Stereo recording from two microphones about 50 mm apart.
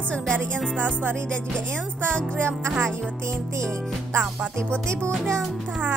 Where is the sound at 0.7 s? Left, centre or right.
Right.